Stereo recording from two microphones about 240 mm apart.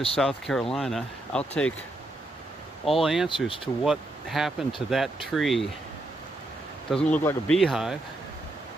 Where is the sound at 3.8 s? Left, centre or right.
Centre.